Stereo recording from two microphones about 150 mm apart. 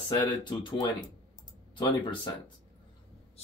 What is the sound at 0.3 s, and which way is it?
Speech, 30° left (ahead or behind).